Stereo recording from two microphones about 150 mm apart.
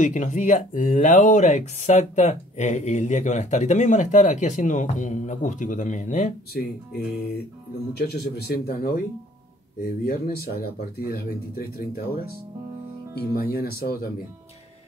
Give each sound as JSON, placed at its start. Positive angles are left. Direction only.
{"t": 0.0, "sound": "speech", "side_deg": 55}
{"t": 7.9, "sound": "speech", "side_deg": 90}
{"t": 13.1, "sound": "speech", "side_deg": 90}